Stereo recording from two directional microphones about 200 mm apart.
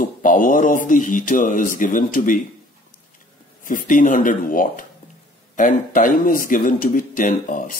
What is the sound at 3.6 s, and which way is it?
Speech, 40° left (ahead or behind).